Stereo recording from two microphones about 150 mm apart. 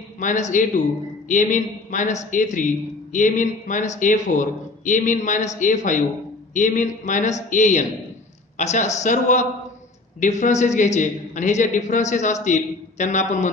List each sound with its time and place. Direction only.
0.2 s a man's voice: 55° left (ahead or behind)